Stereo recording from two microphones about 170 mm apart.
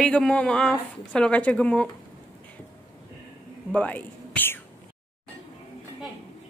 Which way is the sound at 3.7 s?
10° left (ahead or behind).